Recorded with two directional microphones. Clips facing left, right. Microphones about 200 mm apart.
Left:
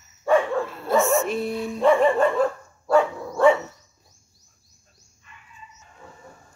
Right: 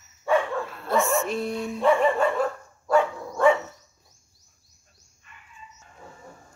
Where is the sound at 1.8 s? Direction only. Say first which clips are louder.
Left 3 dB; 35° left (ahead or behind).